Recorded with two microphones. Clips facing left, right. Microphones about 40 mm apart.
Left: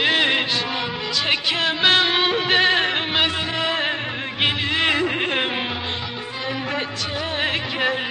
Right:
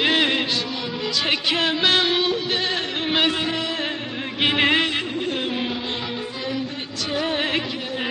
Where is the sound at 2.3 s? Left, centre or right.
Left.